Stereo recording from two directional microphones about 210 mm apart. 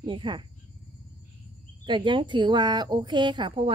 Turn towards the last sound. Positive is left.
turn(degrees=-25)  # may be behind; listen again after turning